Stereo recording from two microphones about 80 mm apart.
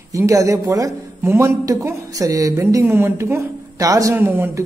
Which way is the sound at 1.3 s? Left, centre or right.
Right.